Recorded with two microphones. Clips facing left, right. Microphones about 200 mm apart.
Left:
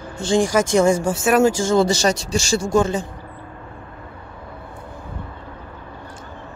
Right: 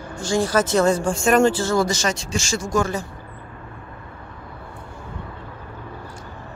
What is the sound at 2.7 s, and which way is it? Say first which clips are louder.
Speech: left 3 dB; 25° left (ahead or behind).